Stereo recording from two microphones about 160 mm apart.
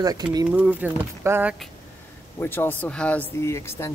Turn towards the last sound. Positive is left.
turn(degrees=15)  # may be behind; listen again after turning